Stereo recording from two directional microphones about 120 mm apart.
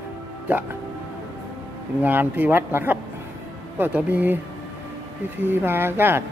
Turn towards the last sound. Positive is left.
turn(degrees=-20)  # may be behind; listen again after turning